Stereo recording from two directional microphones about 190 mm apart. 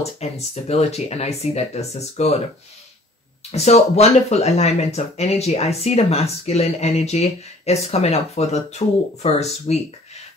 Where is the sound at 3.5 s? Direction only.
35° left (ahead or behind).